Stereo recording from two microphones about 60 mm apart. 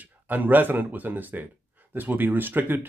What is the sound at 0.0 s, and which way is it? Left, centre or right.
Speech, right.